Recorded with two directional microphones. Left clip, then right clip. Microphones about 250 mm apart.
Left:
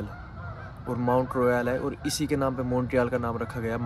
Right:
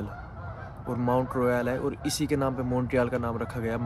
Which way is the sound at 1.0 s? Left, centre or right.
Centre.